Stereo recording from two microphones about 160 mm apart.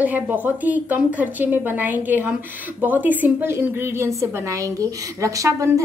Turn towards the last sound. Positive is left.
turn(degrees=-20)  # may be behind; listen again after turning